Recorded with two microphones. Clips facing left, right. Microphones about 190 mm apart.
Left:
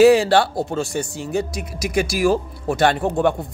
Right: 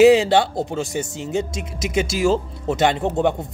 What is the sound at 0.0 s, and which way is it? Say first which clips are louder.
Speech: even; 20° right (ahead or behind).